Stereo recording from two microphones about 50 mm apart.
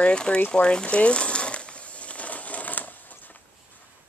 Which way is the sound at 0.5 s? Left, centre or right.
Centre.